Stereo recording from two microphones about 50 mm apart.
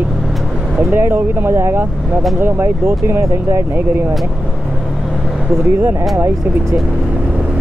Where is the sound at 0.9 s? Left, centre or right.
Right.